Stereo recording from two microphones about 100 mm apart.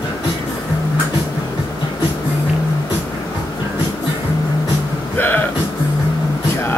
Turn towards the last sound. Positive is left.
turn(degrees=20)  # may be behind; listen again after turning